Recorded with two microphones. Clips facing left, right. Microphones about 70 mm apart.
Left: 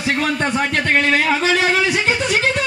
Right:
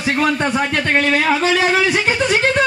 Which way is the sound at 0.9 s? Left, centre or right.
Right.